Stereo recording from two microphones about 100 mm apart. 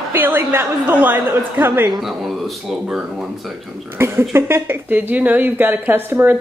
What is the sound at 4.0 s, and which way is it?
A woman's voice, 25° right (ahead or behind).